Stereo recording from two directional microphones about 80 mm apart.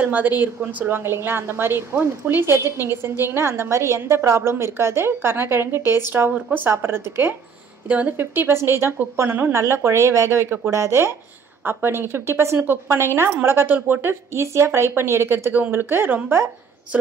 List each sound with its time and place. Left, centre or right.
0.0 s a woman's voice: right